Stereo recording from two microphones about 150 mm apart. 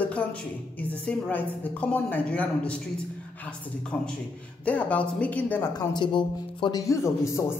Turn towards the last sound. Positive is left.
turn(degrees=20)  # may be behind; listen again after turning